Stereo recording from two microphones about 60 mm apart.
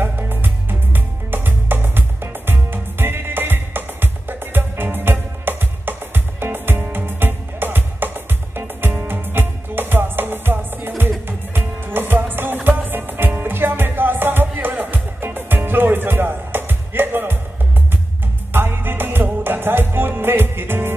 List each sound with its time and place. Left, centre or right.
0.0 s music: right
18.5 s music: right